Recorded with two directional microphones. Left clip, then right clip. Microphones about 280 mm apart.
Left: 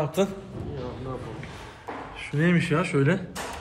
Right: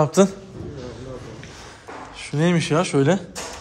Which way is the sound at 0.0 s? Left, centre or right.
Right.